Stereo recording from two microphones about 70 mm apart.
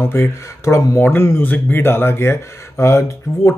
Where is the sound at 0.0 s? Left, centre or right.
Left.